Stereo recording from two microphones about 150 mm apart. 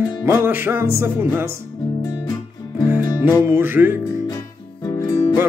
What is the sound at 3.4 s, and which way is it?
Music, 15° right (ahead or behind).